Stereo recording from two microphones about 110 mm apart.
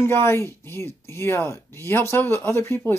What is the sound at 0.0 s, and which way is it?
Speech, 20° left (ahead or behind).